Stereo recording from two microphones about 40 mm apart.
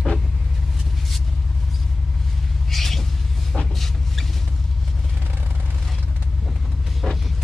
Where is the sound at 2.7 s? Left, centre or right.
Centre.